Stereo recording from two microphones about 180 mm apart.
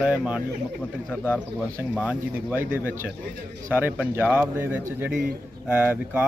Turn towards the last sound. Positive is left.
turn(degrees=-10)  # may be behind; listen again after turning